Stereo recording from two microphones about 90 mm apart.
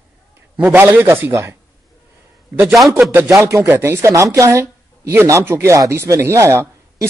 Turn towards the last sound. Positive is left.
turn(degrees=-35)  # may be behind; listen again after turning